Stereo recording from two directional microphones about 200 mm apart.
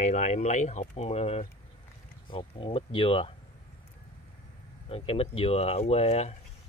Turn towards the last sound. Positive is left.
turn(degrees=30)  # may be behind; listen again after turning